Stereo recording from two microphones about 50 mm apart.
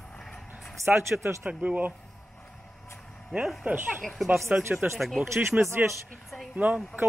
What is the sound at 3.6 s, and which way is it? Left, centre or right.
Speech, right.